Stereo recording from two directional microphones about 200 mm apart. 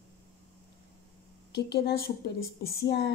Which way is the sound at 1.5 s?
55° left (ahead or behind).